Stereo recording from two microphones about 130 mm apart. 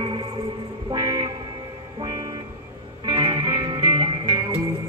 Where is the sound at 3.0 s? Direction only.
40° right (ahead or behind).